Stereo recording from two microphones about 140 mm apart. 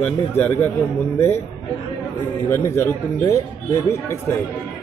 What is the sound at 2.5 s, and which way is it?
Speech, 20° left (ahead or behind).